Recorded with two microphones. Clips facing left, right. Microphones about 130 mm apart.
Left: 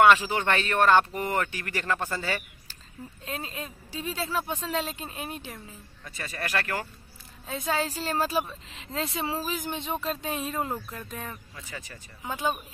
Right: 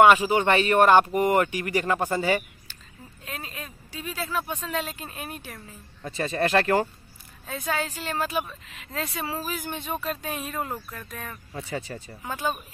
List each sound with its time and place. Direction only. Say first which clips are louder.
0.0 s speech: right 3 dB; 10° right (ahead or behind)
3.3 s speech: left 2 dB; 25° left (ahead or behind)
6.0 s speech: right 10 dB; 30° right (ahead or behind)
7.4 s speech: even; 25° left (ahead or behind)
11.5 s speech: right 9 dB; 30° right (ahead or behind)
12.2 s speech: even; 15° left (ahead or behind)